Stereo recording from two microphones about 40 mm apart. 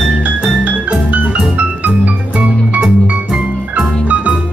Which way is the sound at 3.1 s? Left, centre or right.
Right.